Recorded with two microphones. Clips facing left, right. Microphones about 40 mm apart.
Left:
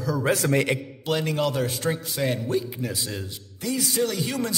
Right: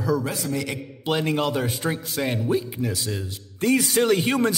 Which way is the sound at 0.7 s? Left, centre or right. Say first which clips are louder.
Left 5 dB; left.